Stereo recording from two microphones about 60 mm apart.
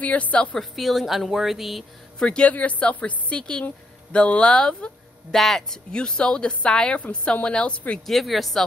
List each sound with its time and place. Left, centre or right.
0.0 s a woman's voice: left
0.6 s speech: centre
2.1 s a woman's voice: centre
8.1 s speech: centre